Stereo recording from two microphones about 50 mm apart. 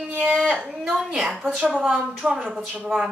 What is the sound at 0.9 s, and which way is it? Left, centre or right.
Speech, centre.